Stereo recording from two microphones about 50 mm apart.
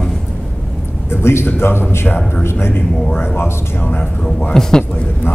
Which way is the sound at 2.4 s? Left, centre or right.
Left.